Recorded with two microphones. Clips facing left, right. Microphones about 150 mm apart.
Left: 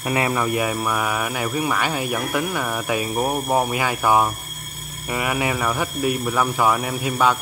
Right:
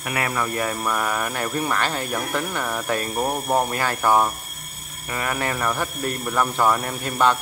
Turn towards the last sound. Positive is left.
turn(degrees=5)  # may be behind; listen again after turning